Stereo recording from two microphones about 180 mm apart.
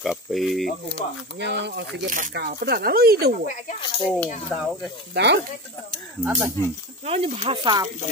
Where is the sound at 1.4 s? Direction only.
70° right (ahead or behind).